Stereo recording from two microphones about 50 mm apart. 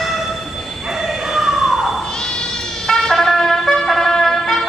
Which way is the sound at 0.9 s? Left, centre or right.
Centre.